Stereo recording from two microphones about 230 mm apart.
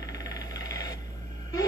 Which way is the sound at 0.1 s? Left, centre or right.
Centre.